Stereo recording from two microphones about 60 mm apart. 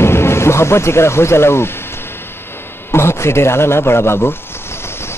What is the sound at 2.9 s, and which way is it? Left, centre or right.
A man's voice, left.